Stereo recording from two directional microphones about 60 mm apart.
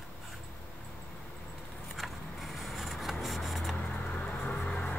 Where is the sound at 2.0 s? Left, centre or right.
Centre.